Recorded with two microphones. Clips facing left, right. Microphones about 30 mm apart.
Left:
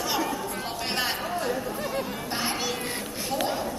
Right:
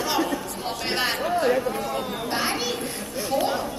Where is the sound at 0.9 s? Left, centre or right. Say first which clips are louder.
Right 6 dB; right.